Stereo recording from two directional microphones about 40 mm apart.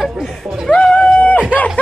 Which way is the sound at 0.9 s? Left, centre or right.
Left.